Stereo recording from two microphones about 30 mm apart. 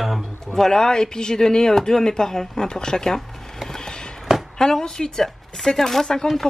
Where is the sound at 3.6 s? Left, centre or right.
Left.